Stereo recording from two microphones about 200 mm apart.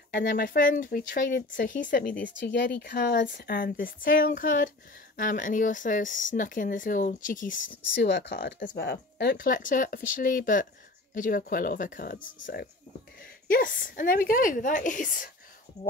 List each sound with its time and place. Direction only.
0.1 s speech: 45° left (ahead or behind)
2.2 s speech: 60° left (ahead or behind)
3.3 s speech: 50° left (ahead or behind)
7.9 s speech: 55° left (ahead or behind); by 15.1 s 40° left (ahead or behind)